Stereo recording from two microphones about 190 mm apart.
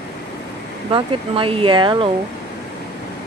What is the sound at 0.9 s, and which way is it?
Speech, 30° right (ahead or behind).